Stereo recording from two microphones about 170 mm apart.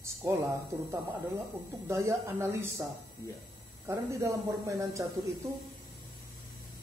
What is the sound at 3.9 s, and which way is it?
A woman's voice, 20° right (ahead or behind).